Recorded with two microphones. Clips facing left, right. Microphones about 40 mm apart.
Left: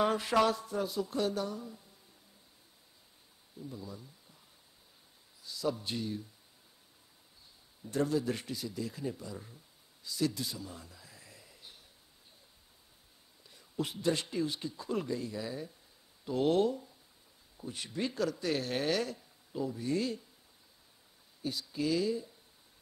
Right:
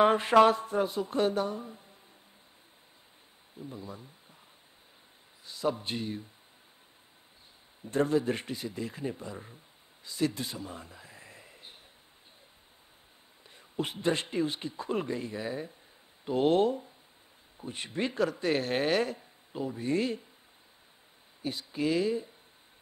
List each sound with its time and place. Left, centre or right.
0.0 s speech: right
3.5 s speech: right
5.4 s speech: right
7.8 s speech: right
10.0 s a sound: right
13.5 s speech: right
21.4 s speech: right